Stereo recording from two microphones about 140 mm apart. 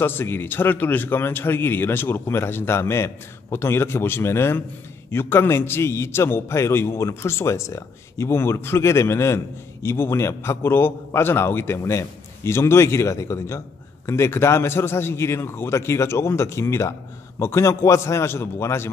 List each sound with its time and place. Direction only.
0.0 s a man's voice: 15° left (ahead or behind)